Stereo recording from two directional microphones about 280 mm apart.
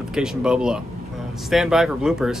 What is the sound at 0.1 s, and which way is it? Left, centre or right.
Speech, centre.